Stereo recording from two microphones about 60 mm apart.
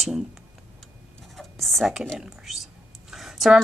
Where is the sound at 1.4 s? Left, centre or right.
Centre.